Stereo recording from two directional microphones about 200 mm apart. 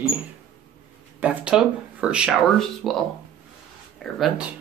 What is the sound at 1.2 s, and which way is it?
Speech, 5° right (ahead or behind).